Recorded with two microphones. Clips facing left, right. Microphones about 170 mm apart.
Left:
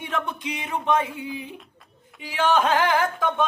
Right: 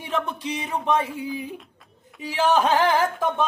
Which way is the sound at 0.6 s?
Centre (ahead or behind).